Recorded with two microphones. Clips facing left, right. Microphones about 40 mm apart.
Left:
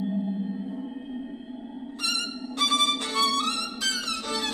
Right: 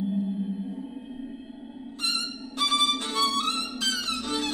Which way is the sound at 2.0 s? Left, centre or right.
Left.